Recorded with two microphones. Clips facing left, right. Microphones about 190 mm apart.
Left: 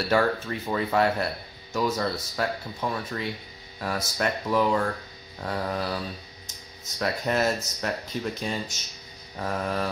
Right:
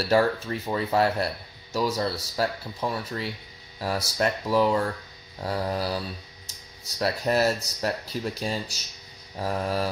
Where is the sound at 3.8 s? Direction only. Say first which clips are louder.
Right 2 dB; 30° right (ahead or behind).